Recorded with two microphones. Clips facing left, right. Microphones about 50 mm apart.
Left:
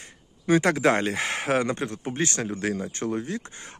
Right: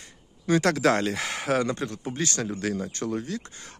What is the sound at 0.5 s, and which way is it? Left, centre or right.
Speech, centre.